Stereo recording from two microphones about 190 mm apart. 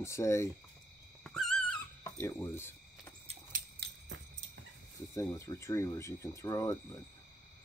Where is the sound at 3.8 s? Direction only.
60° right (ahead or behind).